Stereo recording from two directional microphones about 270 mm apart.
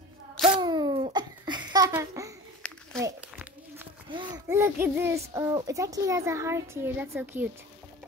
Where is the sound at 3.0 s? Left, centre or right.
Centre.